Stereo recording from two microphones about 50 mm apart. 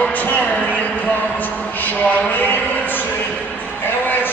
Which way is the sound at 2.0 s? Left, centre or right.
Left.